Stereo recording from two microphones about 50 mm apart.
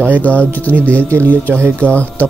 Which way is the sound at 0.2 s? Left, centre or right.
Left.